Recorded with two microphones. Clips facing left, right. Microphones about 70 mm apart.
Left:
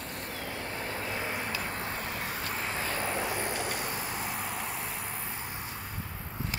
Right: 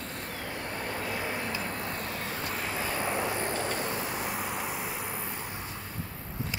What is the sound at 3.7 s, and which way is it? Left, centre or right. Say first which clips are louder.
Vehicle: right 3 dB; centre.